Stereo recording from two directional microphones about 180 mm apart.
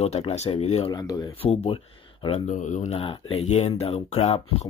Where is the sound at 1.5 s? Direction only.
35° left (ahead or behind).